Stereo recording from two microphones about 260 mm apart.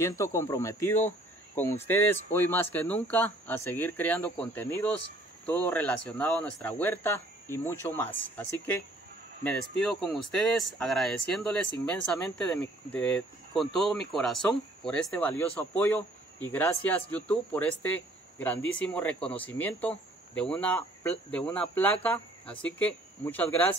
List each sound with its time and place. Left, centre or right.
0.0 s speech: centre